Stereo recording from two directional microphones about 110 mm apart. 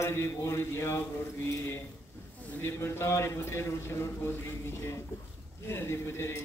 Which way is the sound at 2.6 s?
20° left (ahead or behind).